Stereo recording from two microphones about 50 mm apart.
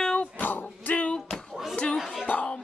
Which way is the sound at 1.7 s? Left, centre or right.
Left.